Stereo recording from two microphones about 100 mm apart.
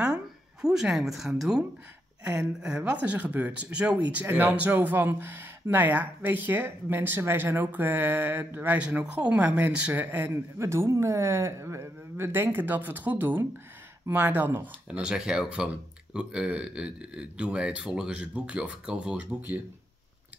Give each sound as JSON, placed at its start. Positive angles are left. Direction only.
{"t": 0.0, "sound": "speech", "side_deg": -10}